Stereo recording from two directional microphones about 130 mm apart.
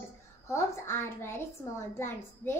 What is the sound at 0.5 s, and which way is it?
A woman's voice, 20° left (ahead or behind).